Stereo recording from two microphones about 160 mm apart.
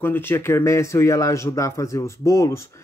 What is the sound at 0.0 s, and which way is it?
Speech, 15° left (ahead or behind).